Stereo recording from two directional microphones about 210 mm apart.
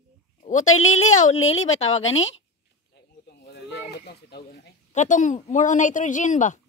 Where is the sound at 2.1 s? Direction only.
65° left (ahead or behind).